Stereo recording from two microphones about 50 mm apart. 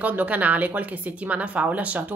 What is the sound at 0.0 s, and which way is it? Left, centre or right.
Speech, right.